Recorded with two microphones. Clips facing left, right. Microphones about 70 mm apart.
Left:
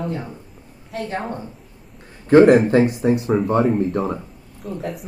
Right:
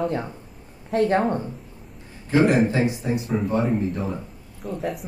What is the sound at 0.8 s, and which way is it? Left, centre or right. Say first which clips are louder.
Speech: right 7 dB; right.